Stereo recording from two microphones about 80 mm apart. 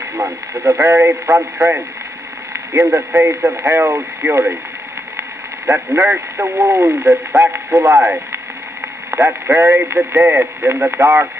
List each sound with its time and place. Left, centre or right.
0.1 s speech: right
6.0 s speech: right
7.4 s speech: centre
7.7 s speech: right
8.0 s speech: right